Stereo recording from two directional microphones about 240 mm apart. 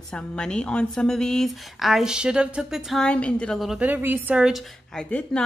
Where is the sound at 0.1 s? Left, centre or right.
Centre.